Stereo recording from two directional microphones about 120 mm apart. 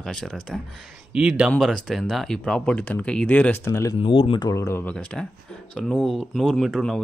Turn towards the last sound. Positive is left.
turn(degrees=0)  # may be behind; listen again after turning